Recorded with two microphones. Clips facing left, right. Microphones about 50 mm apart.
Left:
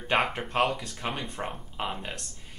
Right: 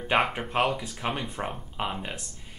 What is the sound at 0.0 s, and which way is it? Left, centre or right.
Speech, centre.